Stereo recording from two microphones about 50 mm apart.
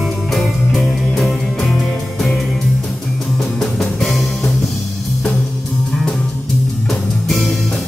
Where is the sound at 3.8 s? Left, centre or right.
Centre.